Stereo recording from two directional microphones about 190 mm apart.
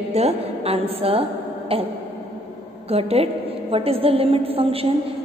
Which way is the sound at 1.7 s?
30° right (ahead or behind).